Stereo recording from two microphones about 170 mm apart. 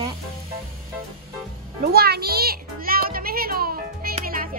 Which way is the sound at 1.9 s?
65° right (ahead or behind).